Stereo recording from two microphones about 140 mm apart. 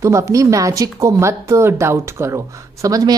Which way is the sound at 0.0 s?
20° right (ahead or behind).